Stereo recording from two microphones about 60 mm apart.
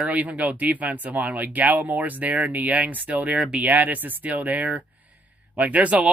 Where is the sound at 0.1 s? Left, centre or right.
Right.